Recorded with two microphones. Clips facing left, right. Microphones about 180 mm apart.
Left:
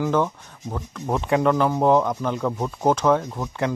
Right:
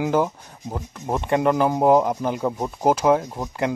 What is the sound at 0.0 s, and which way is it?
Speech, 15° right (ahead or behind).